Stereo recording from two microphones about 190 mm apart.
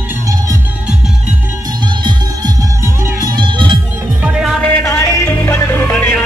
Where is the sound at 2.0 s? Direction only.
20° right (ahead or behind).